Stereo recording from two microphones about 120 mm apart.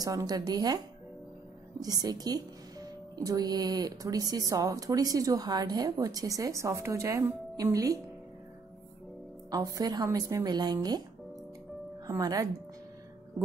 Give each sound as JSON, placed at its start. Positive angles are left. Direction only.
{"t": 0.0, "sound": "speech", "side_deg": -30}
{"t": 1.8, "sound": "speech", "side_deg": -30}
{"t": 9.5, "sound": "speech", "side_deg": -30}
{"t": 12.1, "sound": "speech", "side_deg": -30}